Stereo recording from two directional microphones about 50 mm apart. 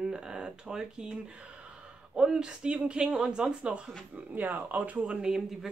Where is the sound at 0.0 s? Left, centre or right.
Centre.